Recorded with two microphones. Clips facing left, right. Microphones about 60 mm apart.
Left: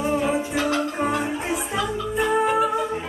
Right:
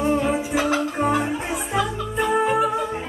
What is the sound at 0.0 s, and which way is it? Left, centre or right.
Music, centre.